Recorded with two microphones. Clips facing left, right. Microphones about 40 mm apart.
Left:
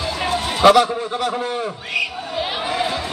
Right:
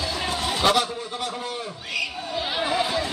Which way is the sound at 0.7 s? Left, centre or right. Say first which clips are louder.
Left 8 dB; left.